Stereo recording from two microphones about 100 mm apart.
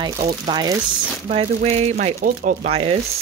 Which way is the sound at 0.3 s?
45° right (ahead or behind).